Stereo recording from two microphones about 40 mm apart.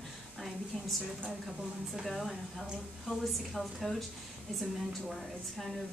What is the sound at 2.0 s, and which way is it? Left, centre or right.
Speech, centre.